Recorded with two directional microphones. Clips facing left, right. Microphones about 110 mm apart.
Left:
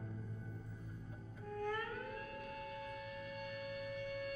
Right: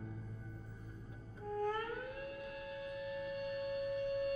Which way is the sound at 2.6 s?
40° left (ahead or behind).